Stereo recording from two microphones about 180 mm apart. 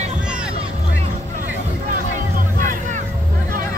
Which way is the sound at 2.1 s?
45° right (ahead or behind).